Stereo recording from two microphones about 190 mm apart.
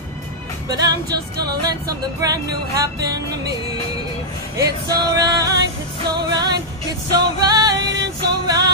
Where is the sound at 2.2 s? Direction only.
20° right (ahead or behind).